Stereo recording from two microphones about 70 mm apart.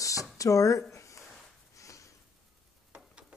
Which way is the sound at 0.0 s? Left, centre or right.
Left.